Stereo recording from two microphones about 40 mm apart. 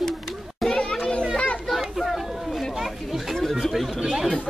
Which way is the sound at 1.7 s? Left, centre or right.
Centre.